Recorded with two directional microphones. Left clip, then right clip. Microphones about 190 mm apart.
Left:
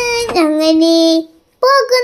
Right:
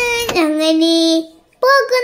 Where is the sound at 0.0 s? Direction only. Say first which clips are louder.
Left 2 dB; 10° left (ahead or behind).